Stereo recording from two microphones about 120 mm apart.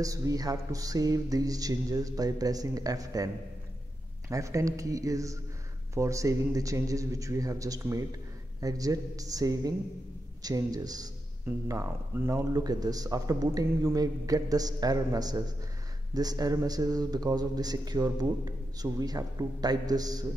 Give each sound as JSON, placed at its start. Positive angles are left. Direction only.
{"t": 0.0, "sound": "speech", "side_deg": -30}
{"t": 4.3, "sound": "speech", "side_deg": -25}